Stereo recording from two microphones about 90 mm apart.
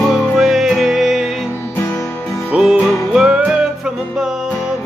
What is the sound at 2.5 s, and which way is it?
Music, 10° right (ahead or behind).